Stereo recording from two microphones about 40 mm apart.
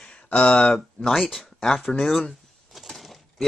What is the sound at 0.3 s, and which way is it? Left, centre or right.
Speech, left.